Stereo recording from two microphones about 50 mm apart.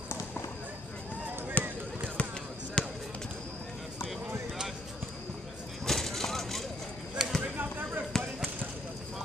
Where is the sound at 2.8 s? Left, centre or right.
Centre.